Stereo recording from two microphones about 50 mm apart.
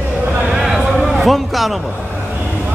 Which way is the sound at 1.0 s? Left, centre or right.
Centre.